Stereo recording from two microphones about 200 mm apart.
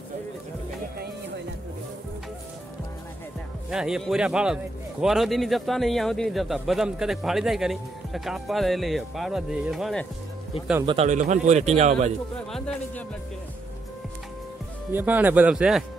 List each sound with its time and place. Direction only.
3.7 s a man's voice: 5° right (ahead or behind)
10.9 s a man's voice: 35° right (ahead or behind)
12.4 s a man's voice: 5° left (ahead or behind)
14.9 s speech: 10° right (ahead or behind)